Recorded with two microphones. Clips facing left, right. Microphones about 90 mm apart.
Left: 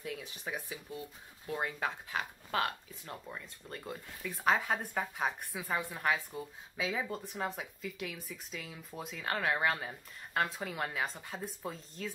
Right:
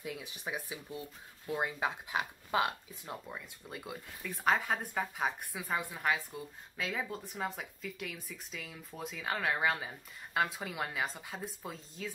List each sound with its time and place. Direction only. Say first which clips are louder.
0.0 s speech: even; 15° right (ahead or behind)